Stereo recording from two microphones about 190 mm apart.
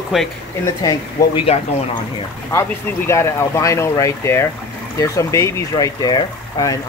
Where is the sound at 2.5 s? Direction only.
15° left (ahead or behind).